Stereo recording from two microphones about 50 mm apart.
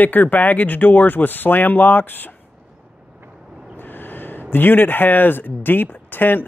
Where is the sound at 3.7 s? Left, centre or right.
Left.